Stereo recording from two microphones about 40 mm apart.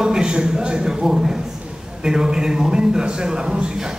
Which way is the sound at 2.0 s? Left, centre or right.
Centre.